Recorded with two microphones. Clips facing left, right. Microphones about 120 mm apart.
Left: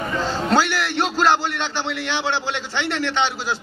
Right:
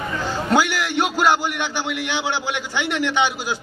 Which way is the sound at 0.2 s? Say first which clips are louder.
Even; 15° right (ahead or behind).